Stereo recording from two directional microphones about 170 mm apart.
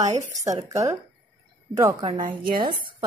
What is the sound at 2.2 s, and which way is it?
Speech, 55° right (ahead or behind).